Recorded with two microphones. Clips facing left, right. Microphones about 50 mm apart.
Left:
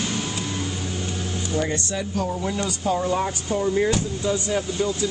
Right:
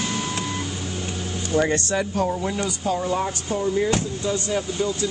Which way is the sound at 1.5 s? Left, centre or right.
Right.